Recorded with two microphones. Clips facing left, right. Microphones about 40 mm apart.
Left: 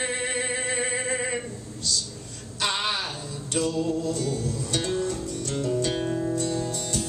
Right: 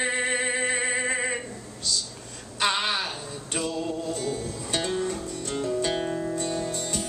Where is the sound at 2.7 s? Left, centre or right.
Centre.